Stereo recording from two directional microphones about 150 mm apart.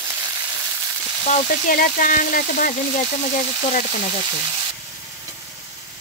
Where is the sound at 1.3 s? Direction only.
70° left (ahead or behind).